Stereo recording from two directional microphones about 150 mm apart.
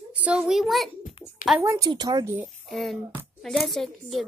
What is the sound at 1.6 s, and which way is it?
Speech, 20° right (ahead or behind).